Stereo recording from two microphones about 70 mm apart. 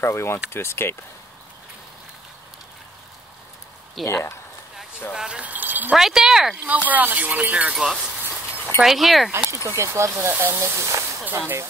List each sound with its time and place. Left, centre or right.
0.0 s speech: left
4.0 s speech: centre
5.1 s speech: centre
5.5 s wind chime: right
5.9 s speech: centre
6.6 s speech: right
7.7 s speech: centre
9.7 s speech: right
10.3 s speech: right
10.6 s speech: right